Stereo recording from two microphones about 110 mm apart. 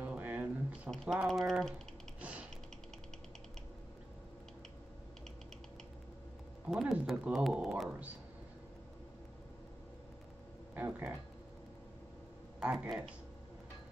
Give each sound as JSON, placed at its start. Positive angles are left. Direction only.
{"t": 0.0, "sound": "a sound", "side_deg": -15}
{"t": 1.0, "sound": "speech", "side_deg": 0}
{"t": 2.1, "sound": "typing", "side_deg": -10}
{"t": 6.7, "sound": "speech", "side_deg": -5}
{"t": 10.7, "sound": "speech", "side_deg": -15}
{"t": 12.5, "sound": "speech", "side_deg": -10}